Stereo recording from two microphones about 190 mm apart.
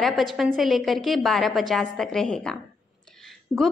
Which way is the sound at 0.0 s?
Centre (ahead or behind).